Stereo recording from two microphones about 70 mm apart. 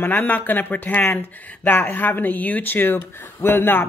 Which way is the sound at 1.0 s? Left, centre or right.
Left.